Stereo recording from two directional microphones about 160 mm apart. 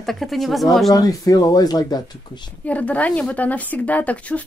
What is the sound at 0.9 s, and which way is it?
Speech, 20° left (ahead or behind).